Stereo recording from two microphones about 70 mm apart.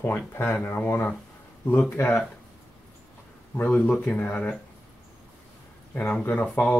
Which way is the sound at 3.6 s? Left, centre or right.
Left.